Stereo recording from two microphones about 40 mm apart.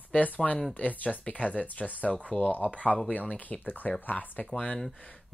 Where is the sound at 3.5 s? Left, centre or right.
Left.